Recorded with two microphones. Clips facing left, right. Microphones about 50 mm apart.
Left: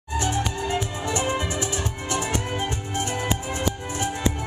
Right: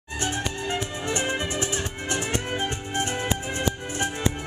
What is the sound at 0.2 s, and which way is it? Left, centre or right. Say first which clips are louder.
Music: left 2 dB; right.